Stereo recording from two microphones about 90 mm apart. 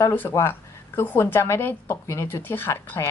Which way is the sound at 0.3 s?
30° left (ahead or behind).